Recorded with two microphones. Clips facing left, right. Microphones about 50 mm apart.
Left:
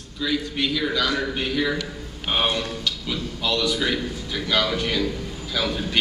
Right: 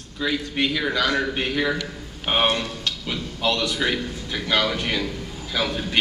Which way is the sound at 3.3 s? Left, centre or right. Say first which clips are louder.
Right 1 dB; right.